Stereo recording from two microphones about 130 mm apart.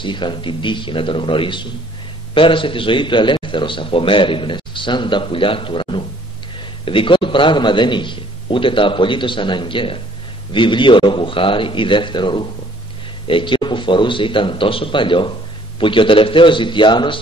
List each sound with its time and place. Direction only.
0.0 s a man's voice: 35° left (ahead or behind)